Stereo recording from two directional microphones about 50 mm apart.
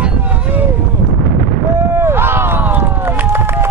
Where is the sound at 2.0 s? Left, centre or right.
Right.